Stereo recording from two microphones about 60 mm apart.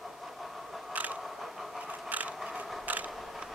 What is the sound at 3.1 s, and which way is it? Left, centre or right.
Mechanisms, centre.